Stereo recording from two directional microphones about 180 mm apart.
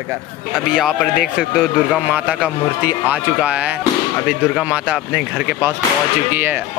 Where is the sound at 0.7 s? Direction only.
Centre (ahead or behind).